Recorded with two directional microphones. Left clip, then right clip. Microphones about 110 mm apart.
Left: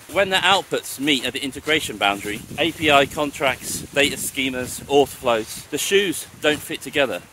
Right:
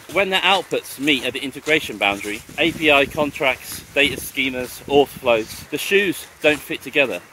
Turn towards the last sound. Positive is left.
turn(degrees=55)  # may be behind; listen again after turning